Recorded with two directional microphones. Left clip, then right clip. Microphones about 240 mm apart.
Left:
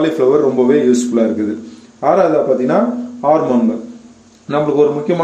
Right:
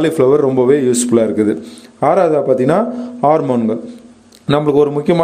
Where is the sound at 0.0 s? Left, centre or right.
Right.